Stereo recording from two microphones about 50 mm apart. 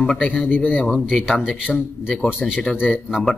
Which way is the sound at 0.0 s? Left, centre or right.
Centre.